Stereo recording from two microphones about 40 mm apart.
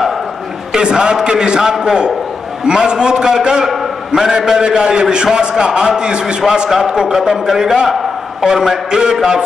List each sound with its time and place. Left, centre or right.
0.7 s a man's voice: right